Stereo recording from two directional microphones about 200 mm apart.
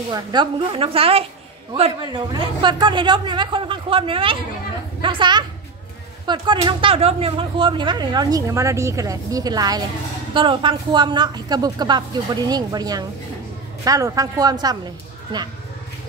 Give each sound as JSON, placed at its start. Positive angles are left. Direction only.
{"t": 0.1, "sound": "a woman's voice", "side_deg": -20}